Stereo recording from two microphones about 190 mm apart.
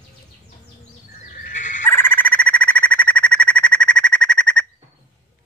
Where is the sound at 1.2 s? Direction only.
45° left (ahead or behind).